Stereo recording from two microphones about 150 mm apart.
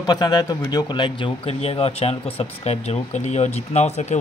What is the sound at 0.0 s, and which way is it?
Speech, 25° left (ahead or behind).